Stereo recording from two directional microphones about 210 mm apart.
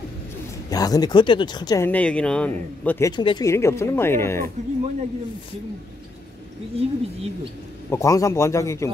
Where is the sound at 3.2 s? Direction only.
20° left (ahead or behind).